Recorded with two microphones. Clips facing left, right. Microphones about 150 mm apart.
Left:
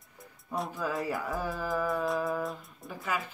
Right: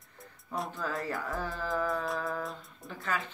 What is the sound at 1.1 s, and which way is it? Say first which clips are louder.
Music: left 2 dB; 15° left (ahead or behind).